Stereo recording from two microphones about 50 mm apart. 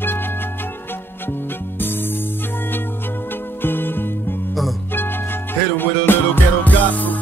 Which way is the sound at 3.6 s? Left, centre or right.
Left.